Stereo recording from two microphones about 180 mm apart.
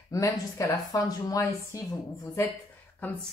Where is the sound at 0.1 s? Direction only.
20° left (ahead or behind).